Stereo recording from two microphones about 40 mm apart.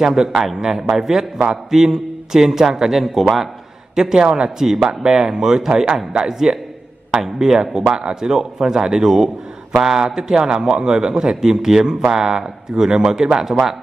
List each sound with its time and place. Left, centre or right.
0.0 s a man's voice: centre
3.9 s a man's voice: centre